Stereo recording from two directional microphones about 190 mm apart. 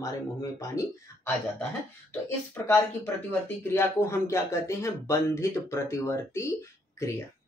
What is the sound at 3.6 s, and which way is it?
Speech, 15° left (ahead or behind).